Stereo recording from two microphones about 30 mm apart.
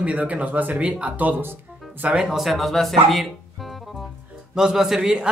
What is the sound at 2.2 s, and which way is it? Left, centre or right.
Speech, centre.